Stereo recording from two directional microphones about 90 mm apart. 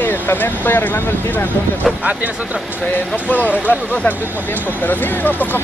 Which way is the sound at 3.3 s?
20° left (ahead or behind).